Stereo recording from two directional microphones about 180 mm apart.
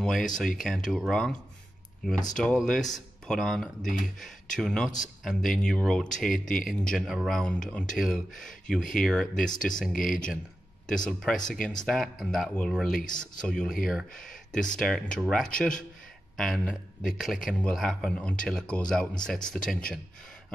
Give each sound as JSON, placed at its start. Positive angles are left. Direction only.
{"t": 0.0, "sound": "speech", "side_deg": 5}
{"t": 2.3, "sound": "speech", "side_deg": 5}
{"t": 12.9, "sound": "speech", "side_deg": 50}
{"t": 13.4, "sound": "speech", "side_deg": 5}